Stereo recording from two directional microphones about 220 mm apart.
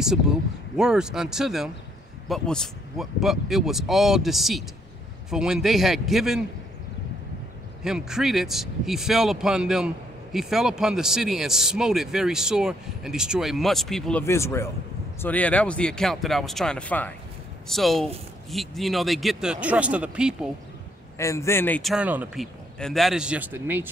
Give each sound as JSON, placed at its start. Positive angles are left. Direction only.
{"t": 0.0, "sound": "speech", "side_deg": 0}
{"t": 7.8, "sound": "speech", "side_deg": 0}
{"t": 21.2, "sound": "speech", "side_deg": 15}